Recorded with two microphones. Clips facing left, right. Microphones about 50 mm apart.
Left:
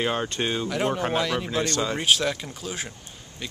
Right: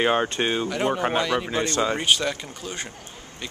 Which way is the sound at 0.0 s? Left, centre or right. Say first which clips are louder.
Right 4 dB; right.